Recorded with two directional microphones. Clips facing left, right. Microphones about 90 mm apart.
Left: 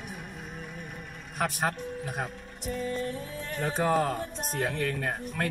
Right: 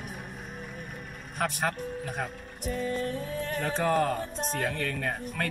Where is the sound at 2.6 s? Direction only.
45° right (ahead or behind).